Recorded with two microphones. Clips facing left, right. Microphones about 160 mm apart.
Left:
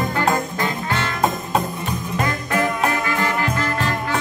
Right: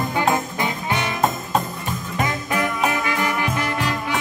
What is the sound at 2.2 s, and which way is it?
Music, 20° right (ahead or behind).